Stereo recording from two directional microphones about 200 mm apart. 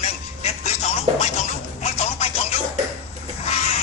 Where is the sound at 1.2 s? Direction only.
35° left (ahead or behind).